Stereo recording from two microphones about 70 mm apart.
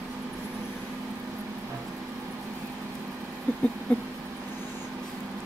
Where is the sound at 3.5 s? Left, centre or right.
Left.